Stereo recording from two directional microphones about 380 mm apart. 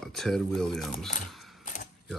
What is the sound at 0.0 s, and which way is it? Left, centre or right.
Speech, centre.